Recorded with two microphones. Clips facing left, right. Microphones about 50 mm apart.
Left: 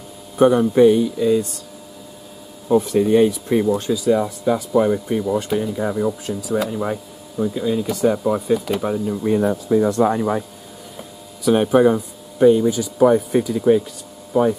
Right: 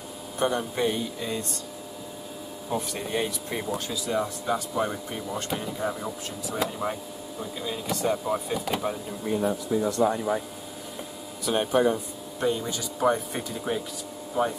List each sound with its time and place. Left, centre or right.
0.4 s speech: centre
0.8 s speech: centre
2.7 s speech: centre
8.5 s speech: centre
8.8 s speech: centre
9.4 s speech: left
10.1 s speech: left
11.4 s speech: centre